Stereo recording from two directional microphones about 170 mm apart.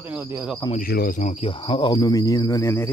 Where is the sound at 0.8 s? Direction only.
60° left (ahead or behind).